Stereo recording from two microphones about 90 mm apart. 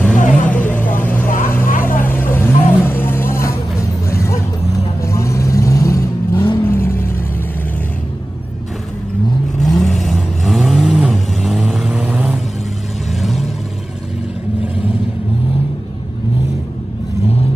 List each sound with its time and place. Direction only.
0.0 s vehicle: 15° left (ahead or behind)
9.8 s vehicle: centre (ahead or behind)
12.0 s vehicle: 15° right (ahead or behind)
13.2 s vehicle: centre (ahead or behind)